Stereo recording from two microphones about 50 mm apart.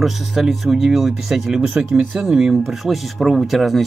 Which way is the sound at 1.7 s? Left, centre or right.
Right.